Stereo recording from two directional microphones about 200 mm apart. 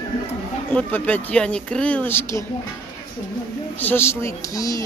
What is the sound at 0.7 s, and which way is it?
Speech, 10° left (ahead or behind).